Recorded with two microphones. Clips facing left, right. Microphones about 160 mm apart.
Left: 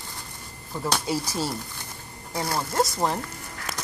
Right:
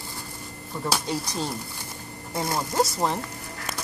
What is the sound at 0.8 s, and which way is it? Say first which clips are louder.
Speech: left 1 dB; 5° left (ahead or behind).